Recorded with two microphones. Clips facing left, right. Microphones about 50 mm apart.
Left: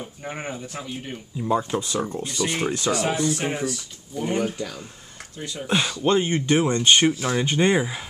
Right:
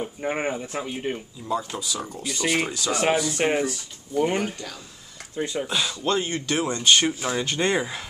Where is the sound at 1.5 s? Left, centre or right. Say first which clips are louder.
Left 4 dB; left.